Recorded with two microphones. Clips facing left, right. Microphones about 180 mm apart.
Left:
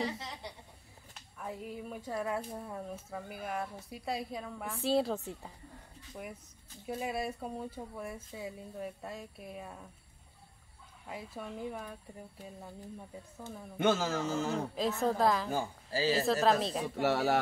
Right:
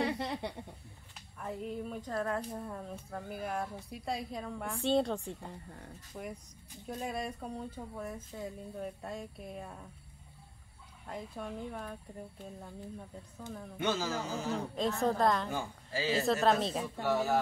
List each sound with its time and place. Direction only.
0.0 s a sound: 60° right (ahead or behind)
1.4 s speech: 5° left (ahead or behind)
11.1 s speech: 5° left (ahead or behind)
13.7 s a man's voice: 50° left (ahead or behind)
14.8 s speech: centre (ahead or behind)
15.5 s speech: 35° left (ahead or behind)
16.1 s speech: centre (ahead or behind)
16.8 s speech: 85° left